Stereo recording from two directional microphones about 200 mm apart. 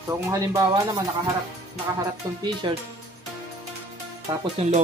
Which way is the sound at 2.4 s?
20° right (ahead or behind).